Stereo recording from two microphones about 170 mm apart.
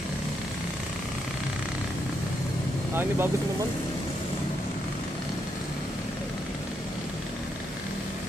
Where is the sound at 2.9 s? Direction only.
15° right (ahead or behind).